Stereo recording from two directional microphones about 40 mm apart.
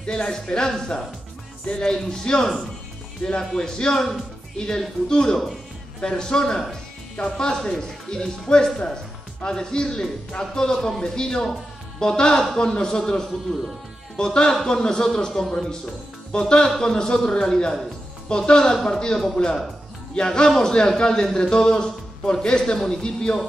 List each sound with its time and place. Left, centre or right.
0.0 s a man's voice: centre